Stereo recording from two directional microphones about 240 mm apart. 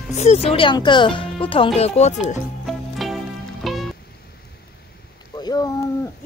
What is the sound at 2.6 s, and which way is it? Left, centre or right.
Music, centre.